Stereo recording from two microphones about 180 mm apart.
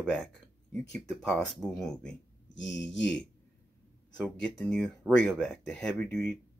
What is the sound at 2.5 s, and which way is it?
Mantra, 90° left.